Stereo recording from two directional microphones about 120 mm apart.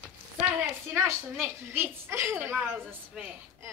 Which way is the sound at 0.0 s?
15° right (ahead or behind).